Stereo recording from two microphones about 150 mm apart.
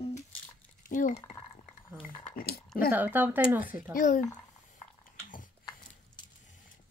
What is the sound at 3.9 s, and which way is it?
Speech, 60° left (ahead or behind).